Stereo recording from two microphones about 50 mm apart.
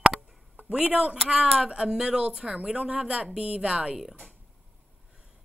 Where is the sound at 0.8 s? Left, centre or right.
Right.